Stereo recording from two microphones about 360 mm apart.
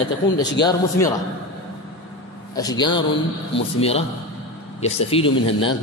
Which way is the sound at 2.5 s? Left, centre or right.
Centre.